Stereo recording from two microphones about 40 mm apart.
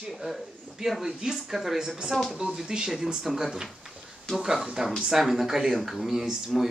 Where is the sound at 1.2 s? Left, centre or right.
Centre.